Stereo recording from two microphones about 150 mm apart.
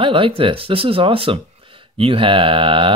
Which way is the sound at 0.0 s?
35° right (ahead or behind).